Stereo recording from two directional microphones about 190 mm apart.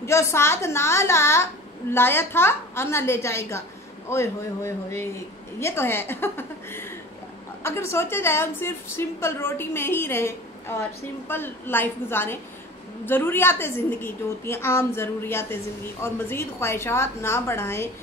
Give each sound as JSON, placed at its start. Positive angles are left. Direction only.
{"t": 0.0, "sound": "a woman's voice", "side_deg": 15}